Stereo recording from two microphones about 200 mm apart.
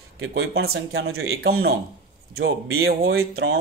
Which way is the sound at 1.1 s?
90° right.